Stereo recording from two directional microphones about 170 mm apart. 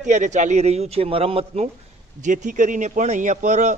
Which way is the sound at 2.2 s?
45° right (ahead or behind).